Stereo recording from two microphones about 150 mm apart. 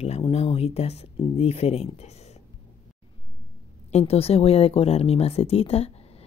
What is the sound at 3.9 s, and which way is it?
Speech, 40° left (ahead or behind).